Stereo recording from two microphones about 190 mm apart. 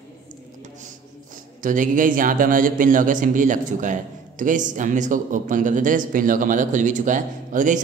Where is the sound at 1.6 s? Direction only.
45° right (ahead or behind).